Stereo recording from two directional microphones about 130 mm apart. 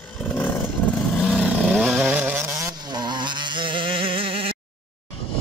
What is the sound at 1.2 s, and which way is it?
Vehicle, 5° right (ahead or behind).